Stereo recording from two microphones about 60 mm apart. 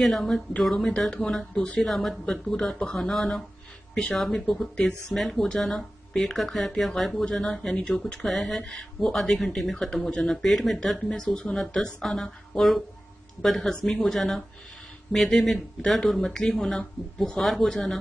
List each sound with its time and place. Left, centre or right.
0.0 s speech: centre
8.3 s speech: centre
11.1 s speech: centre